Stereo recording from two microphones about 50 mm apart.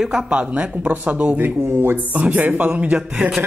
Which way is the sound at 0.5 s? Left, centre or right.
Right.